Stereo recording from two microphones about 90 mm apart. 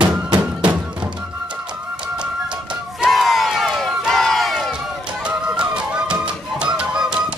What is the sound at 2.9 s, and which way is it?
Crowd, centre (ahead or behind).